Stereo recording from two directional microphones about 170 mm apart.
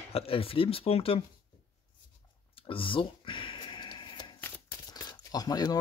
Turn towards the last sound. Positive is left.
turn(degrees=20)  # may be behind; listen again after turning